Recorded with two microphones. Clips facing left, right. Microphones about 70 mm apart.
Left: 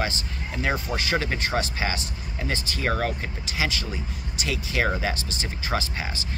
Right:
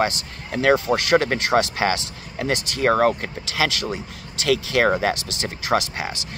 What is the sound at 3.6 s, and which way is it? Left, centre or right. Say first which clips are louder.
Speech: right 5 dB; right.